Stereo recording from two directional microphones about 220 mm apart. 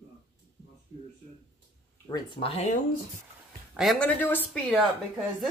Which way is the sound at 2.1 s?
25° left (ahead or behind).